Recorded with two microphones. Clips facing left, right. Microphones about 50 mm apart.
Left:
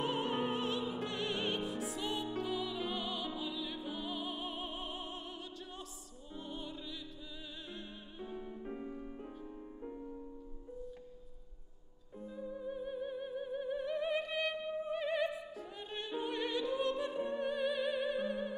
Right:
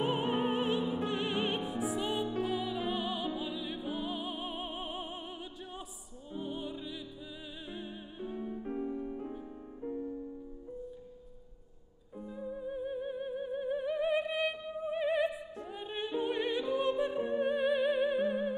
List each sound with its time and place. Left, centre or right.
0.0 s music: centre
12.2 s music: centre